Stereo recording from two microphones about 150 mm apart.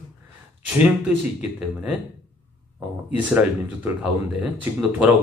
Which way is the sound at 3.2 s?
10° right (ahead or behind).